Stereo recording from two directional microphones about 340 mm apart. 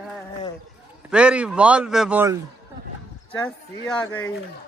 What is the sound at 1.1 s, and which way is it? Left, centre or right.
Speech, centre.